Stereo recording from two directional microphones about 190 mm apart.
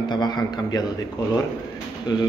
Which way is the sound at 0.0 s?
25° left (ahead or behind).